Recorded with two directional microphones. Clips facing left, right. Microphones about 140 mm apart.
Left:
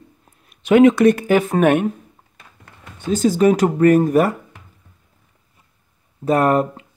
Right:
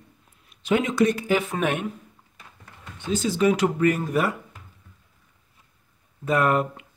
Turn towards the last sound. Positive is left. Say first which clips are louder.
# left 5 dB
turn(degrees=40)  # may be behind; listen again after turning